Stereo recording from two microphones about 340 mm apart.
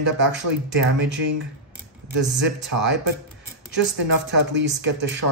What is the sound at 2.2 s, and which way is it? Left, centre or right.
Speech, right.